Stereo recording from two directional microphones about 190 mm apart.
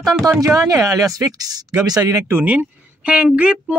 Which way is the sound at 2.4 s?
10° right (ahead or behind).